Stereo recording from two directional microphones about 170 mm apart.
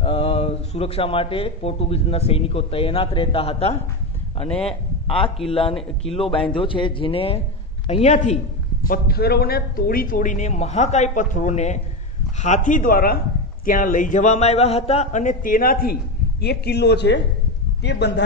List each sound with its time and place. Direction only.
0.0 s speech: 35° left (ahead or behind)
8.8 s speech: 60° left (ahead or behind); by 18.2 s 85° left